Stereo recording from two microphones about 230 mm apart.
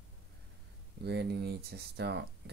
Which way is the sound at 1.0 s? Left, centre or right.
Right.